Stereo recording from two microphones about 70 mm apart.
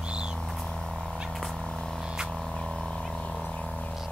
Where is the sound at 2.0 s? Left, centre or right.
Centre.